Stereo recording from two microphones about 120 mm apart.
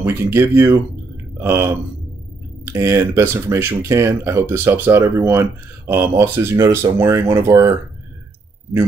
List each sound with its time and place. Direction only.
0.0 s speech: 20° right (ahead or behind)